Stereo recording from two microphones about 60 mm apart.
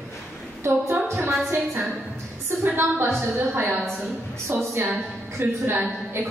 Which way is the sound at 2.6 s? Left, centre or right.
Right.